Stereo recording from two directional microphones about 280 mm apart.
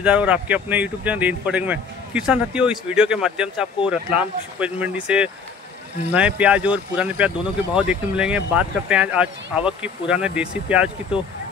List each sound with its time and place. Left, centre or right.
0.0 s speech: centre